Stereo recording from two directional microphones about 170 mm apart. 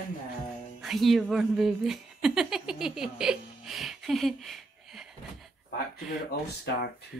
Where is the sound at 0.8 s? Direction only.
Centre (ahead or behind).